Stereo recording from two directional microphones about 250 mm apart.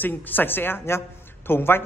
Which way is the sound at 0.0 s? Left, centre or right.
Centre.